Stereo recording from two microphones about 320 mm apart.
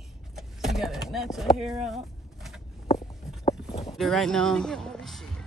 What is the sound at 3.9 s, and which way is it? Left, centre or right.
A man's voice, centre.